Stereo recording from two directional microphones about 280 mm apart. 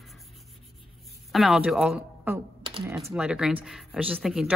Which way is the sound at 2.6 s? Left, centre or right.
Centre.